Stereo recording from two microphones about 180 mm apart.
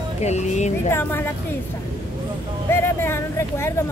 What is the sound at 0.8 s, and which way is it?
Speech, 15° left (ahead or behind).